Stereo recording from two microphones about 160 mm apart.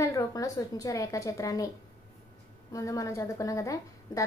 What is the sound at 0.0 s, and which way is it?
A woman's voice, 20° left (ahead or behind).